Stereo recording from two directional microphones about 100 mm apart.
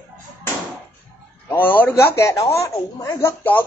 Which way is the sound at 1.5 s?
20° left (ahead or behind).